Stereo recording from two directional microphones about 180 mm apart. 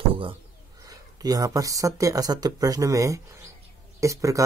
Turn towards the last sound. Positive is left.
turn(degrees=-15)  # may be behind; listen again after turning